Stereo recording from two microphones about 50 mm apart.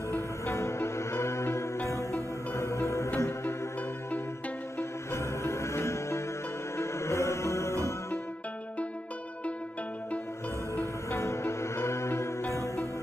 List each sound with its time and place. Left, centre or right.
0.1 s music: left
3.2 s music: left
4.7 s music: left
10.8 s music: left